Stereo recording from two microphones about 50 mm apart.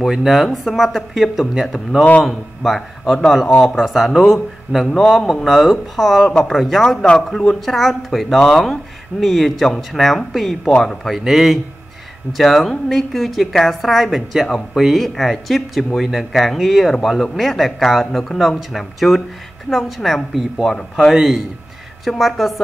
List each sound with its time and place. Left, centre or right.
0.0 s a woman's voice: centre
6.2 s speech: centre
6.5 s a woman's voice: centre
7.1 s speech: centre
7.6 s a woman's voice: centre
9.2 s a woman's voice: centre